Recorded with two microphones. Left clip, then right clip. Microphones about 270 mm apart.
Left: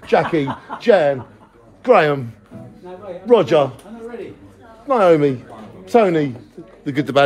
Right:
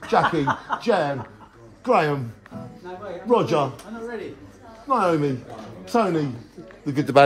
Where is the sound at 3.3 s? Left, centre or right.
Centre.